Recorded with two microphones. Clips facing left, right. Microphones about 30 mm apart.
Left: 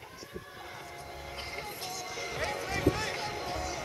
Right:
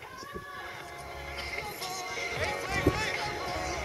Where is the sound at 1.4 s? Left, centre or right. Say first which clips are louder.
Right 3 dB; right.